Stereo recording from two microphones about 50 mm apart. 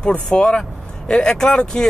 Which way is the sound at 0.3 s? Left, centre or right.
Centre.